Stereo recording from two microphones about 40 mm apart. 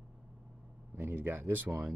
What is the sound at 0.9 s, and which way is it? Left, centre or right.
Speech, right.